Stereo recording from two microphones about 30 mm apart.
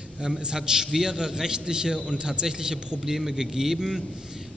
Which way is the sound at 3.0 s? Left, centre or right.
Centre.